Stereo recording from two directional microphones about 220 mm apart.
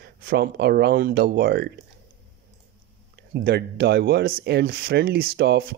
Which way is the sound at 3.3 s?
50° right (ahead or behind).